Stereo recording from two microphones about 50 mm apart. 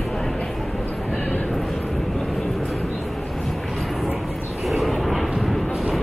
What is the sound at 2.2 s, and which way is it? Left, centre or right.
Vehicle, centre.